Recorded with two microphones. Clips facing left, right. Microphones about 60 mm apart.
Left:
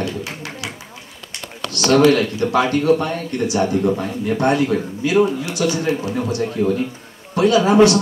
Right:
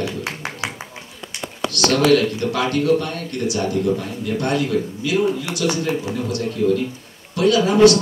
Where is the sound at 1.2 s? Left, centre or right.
Centre.